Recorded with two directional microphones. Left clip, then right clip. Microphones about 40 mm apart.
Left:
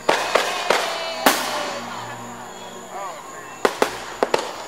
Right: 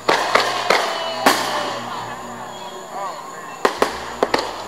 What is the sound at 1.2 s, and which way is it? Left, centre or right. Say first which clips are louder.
Music: right 2 dB; left.